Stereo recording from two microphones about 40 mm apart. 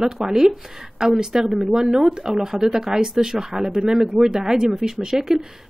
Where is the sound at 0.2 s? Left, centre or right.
Centre.